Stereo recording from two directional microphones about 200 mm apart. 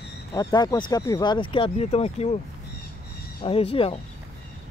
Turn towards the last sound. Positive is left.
turn(degrees=25)  # may be behind; listen again after turning